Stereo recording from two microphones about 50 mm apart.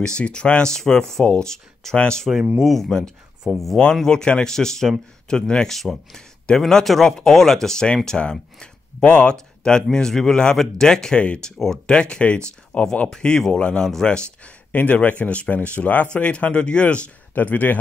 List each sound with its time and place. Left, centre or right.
0.0 s speech: centre
2.6 s speech: centre
3.9 s speech: centre
11.1 s speech: left
11.5 s speech: centre; by 13.1 s left
13.1 s speech: centre
14.7 s speech: left
17.3 s speech: left